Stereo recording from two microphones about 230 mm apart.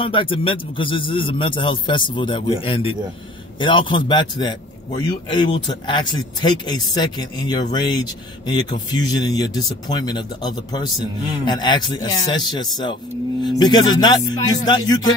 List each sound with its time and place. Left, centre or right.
0.0 s speech: left
8.9 s music: centre
9.8 s speech: centre
13.4 s music: centre